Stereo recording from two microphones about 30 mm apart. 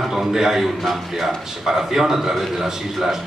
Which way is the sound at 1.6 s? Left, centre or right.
Centre.